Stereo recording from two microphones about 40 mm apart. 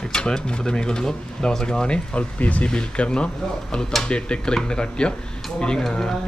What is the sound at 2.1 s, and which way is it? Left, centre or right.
Speech, left.